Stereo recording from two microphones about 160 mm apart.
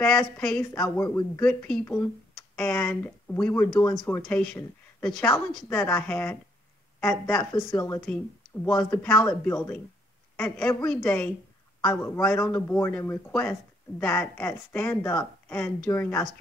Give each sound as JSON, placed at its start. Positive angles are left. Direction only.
{"t": 0.4, "sound": "speech", "side_deg": 5}
{"t": 1.0, "sound": "a man's voice", "side_deg": 20}
{"t": 1.4, "sound": "speech", "side_deg": 10}
{"t": 12.4, "sound": "speech", "side_deg": 15}